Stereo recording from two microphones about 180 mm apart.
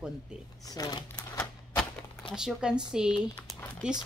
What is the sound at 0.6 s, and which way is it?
Speech, 20° left (ahead or behind).